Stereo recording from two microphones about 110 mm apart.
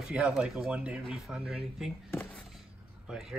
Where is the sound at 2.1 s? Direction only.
20° left (ahead or behind).